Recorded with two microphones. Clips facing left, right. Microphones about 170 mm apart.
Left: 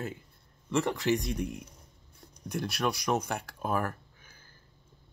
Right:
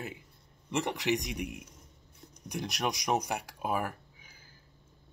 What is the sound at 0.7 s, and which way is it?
Speech, 15° right (ahead or behind).